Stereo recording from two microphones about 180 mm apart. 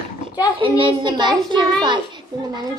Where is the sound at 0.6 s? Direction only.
30° right (ahead or behind).